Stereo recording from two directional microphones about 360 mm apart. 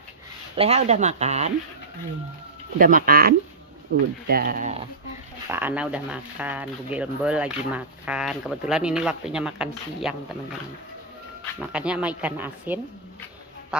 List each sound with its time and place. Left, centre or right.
0.6 s speech: centre
2.8 s speech: right
5.5 s speech: centre
11.6 s speech: centre